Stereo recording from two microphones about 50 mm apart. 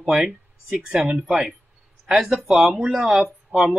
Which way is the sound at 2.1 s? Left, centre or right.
Centre.